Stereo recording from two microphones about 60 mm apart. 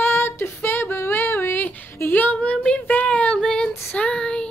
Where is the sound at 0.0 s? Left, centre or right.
Left.